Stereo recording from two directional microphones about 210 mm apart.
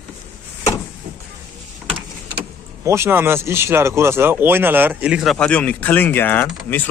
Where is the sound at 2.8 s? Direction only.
10° right (ahead or behind).